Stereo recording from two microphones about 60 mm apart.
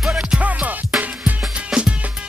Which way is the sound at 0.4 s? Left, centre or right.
Right.